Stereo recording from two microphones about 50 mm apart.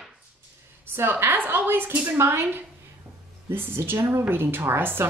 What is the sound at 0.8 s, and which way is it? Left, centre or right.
A woman's voice, right.